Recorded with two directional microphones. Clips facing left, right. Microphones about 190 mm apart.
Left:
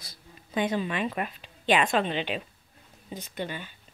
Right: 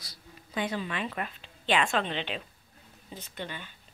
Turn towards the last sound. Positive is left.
turn(degrees=10)  # may be behind; listen again after turning